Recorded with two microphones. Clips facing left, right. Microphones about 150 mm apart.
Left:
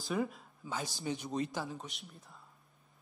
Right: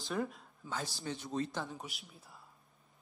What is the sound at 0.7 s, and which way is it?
Speech, 15° left (ahead or behind).